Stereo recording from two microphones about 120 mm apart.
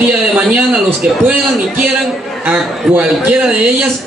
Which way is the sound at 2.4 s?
15° right (ahead or behind).